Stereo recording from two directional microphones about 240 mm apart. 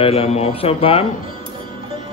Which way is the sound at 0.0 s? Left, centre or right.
Left.